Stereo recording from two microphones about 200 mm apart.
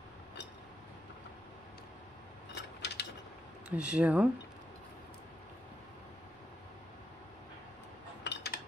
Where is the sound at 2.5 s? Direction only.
60° left (ahead or behind).